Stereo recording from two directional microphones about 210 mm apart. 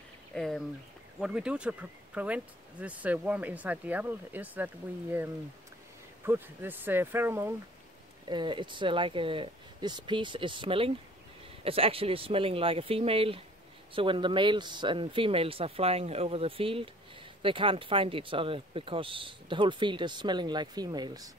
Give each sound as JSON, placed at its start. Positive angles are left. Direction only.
{"t": 0.3, "sound": "speech", "side_deg": 0}
{"t": 6.2, "sound": "speech", "side_deg": -10}
{"t": 8.3, "sound": "speech", "side_deg": -20}